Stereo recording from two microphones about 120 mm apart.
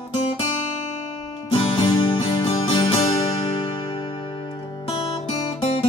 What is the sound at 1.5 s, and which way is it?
Music, 45° left (ahead or behind).